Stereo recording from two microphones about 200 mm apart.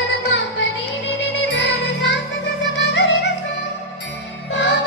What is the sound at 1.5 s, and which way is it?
Music, 60° left (ahead or behind).